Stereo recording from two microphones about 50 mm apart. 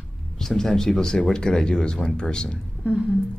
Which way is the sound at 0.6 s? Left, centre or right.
Centre.